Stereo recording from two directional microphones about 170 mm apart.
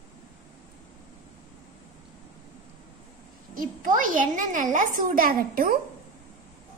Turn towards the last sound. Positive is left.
turn(degrees=-55)  # may be behind; listen again after turning